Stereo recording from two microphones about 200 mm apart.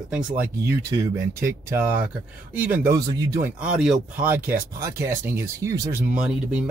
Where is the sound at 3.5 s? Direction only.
5° right (ahead or behind).